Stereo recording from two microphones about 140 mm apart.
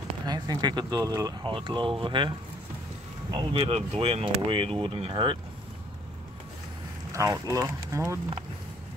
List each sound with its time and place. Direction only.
0.3 s speech: 30° right (ahead or behind)
7.1 s speech: 20° right (ahead or behind)